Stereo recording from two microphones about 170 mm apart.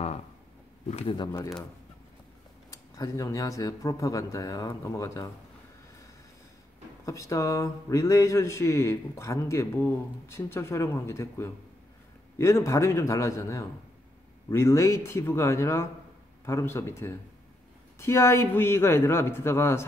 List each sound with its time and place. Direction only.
0.8 s speech: 35° left (ahead or behind)
2.7 s speech: 20° left (ahead or behind)
7.1 s speech: 20° left (ahead or behind)